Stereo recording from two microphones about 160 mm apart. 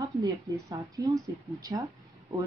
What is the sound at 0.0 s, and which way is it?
A woman's voice, 20° right (ahead or behind).